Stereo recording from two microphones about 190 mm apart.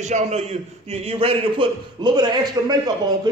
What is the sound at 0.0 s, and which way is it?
A man's voice, 35° right (ahead or behind).